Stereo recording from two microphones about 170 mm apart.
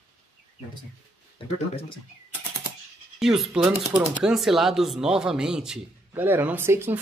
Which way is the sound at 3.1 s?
Centre (ahead or behind).